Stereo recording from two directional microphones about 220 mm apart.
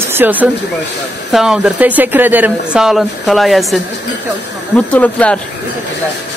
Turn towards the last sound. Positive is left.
turn(degrees=5)  # may be behind; listen again after turning